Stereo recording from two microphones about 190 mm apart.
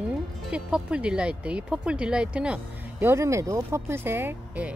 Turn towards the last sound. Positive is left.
turn(degrees=-10)  # may be behind; listen again after turning